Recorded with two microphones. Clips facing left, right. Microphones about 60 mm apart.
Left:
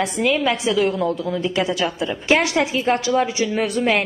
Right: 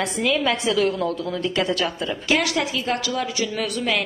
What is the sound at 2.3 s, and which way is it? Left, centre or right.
A woman's voice, left.